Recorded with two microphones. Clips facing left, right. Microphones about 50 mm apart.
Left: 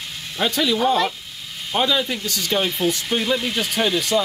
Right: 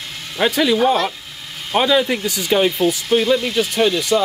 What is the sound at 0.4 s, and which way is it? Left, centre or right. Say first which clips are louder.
Speech: right 5 dB; right.